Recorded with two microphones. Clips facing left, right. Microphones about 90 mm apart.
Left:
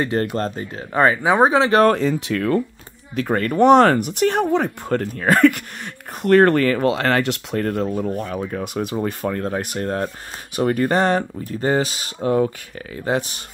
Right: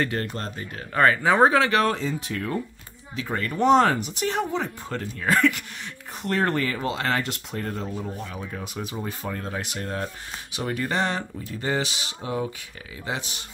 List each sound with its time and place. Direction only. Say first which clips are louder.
0.2 s speech: left 8 dB; 35° left (ahead or behind)
0.9 s speech: left 3 dB; 20° left (ahead or behind)
1.9 s speech: left 8 dB; 65° left (ahead or behind); by 2.6 s 85° left
3.2 s speech: left 8 dB; 55° left (ahead or behind)
6.2 s speech: left 11 dB; 65° left (ahead or behind); by 13.2 s 45° left (ahead or behind)